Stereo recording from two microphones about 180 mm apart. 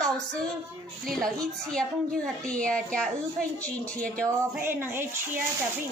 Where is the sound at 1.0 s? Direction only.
5° left (ahead or behind).